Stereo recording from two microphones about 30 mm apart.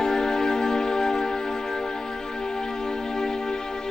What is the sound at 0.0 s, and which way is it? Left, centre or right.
Music, left.